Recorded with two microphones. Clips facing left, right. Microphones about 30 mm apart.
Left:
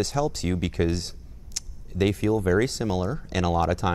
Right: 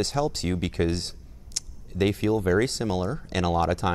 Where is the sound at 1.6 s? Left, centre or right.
Centre.